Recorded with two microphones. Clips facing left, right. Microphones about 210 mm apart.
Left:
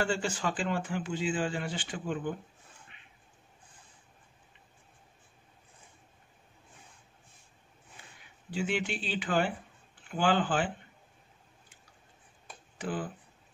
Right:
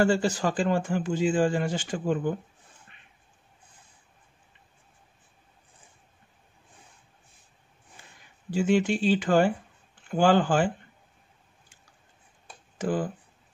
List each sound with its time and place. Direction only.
0.0 s speech: 40° right (ahead or behind)
8.5 s speech: 45° right (ahead or behind)
12.7 s speech: 45° right (ahead or behind)